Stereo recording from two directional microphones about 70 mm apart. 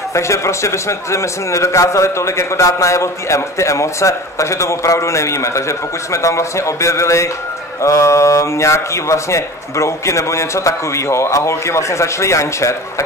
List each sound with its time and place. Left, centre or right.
0.1 s a man's voice: left